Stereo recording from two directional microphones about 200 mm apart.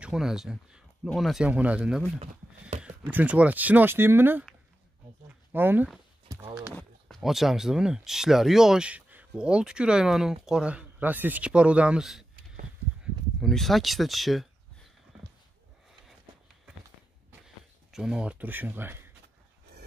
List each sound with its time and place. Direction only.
0.0 s speech: 5° right (ahead or behind)
5.5 s speech: 10° right (ahead or behind)
6.7 s speech: 5° left (ahead or behind)
17.9 s speech: 5° right (ahead or behind)